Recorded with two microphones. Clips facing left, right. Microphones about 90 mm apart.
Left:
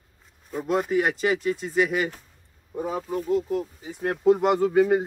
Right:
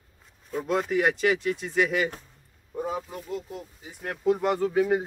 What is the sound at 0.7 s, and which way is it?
Speech, 15° left (ahead or behind).